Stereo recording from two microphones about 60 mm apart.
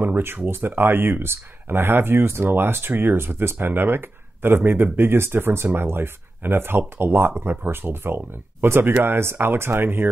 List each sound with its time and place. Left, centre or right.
0.0 s speech: right